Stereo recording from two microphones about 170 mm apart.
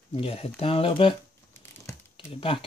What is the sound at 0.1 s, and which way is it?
Speech, 35° left (ahead or behind).